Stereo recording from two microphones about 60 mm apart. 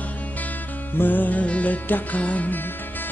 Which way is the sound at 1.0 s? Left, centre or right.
Left.